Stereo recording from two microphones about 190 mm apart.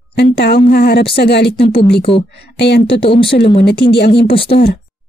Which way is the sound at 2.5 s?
60° left (ahead or behind).